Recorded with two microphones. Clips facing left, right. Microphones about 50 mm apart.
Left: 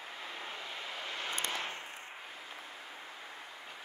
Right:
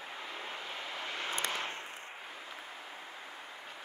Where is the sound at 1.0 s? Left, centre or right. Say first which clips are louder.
Right 1 dB; right.